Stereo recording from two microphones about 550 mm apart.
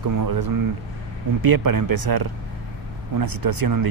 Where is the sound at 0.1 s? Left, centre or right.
Right.